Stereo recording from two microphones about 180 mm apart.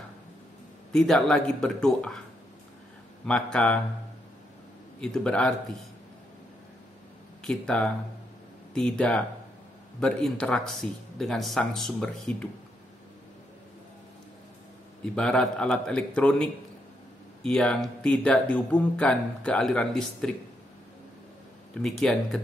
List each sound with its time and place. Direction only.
0.9 s speech: centre (ahead or behind)
3.3 s speech: 5° left (ahead or behind)
5.0 s speech: 5° left (ahead or behind)
7.4 s speech: 5° left (ahead or behind)
15.1 s speech: 5° left (ahead or behind)
21.8 s speech: 5° left (ahead or behind)